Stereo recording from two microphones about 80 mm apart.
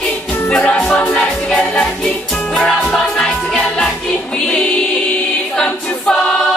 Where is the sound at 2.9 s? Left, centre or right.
Centre.